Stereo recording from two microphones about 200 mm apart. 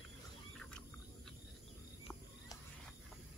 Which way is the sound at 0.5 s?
5° left (ahead or behind).